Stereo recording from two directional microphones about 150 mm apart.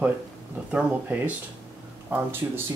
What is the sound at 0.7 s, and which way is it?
Dog, 10° right (ahead or behind).